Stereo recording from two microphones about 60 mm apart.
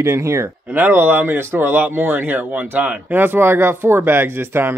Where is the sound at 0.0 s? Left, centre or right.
Right.